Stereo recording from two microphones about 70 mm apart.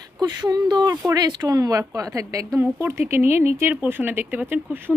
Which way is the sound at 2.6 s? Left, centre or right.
Right.